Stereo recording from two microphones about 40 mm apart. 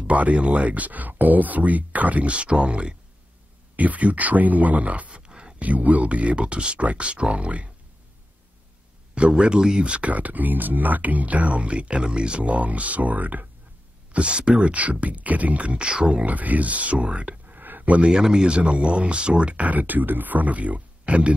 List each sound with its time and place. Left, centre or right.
0.0 s speech: right
3.7 s speech: right
9.1 s speech: right
9.6 s speech: centre
9.8 s speech: right
10.1 s speech: right
14.1 s speech: right
15.9 s speech: right
16.3 s speech: right
17.5 s a sound: right
18.0 s speech: centre
18.6 s speech: right